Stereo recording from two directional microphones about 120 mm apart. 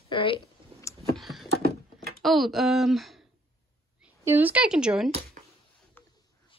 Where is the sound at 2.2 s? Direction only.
Centre (ahead or behind).